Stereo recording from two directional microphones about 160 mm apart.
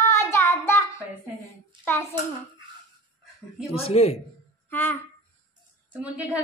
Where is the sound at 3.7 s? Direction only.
40° left (ahead or behind).